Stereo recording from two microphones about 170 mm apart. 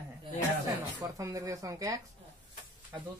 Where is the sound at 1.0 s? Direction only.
20° right (ahead or behind).